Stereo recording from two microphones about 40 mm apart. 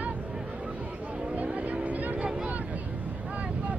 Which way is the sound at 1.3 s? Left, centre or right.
Right.